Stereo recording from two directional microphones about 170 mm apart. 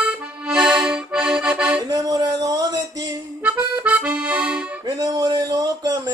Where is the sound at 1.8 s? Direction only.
20° right (ahead or behind).